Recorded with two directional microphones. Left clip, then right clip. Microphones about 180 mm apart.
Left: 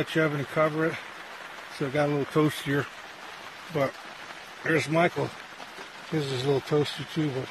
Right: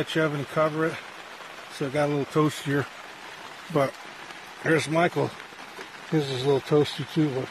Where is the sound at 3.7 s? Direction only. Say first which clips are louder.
Right 3 dB; 45° right (ahead or behind).